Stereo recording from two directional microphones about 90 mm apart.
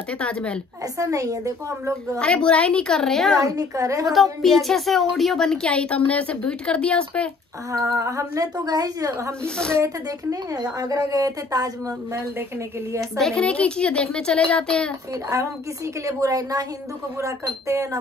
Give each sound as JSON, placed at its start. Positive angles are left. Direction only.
{"t": 0.2, "sound": "a woman's voice", "side_deg": 10}
{"t": 0.9, "sound": "a woman's voice", "side_deg": -35}
{"t": 2.1, "sound": "a woman's voice", "side_deg": 10}
{"t": 3.3, "sound": "a woman's voice", "side_deg": -40}
{"t": 4.1, "sound": "a woman's voice", "side_deg": 0}
{"t": 7.8, "sound": "a woman's voice", "side_deg": -35}
{"t": 10.5, "sound": "speech", "side_deg": -45}
{"t": 13.2, "sound": "a woman's voice", "side_deg": 10}
{"t": 16.1, "sound": "a woman's voice", "side_deg": -40}